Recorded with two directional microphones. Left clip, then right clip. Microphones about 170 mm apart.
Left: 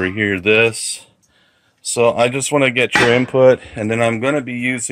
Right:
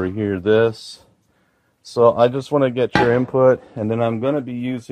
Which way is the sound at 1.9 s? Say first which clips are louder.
Even; 10° right (ahead or behind).